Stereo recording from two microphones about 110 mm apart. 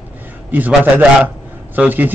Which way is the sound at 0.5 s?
15° right (ahead or behind).